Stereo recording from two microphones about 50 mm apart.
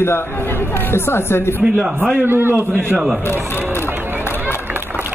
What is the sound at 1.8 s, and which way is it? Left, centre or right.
A man's voice, right.